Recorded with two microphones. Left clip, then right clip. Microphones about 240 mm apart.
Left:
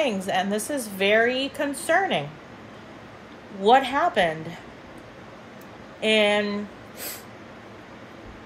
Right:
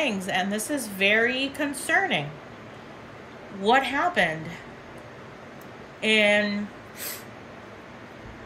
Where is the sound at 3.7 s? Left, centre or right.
Centre.